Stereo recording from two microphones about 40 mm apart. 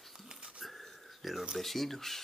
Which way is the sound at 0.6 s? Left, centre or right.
Centre.